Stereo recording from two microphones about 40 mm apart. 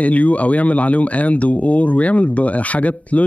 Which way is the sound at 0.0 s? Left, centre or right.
Left.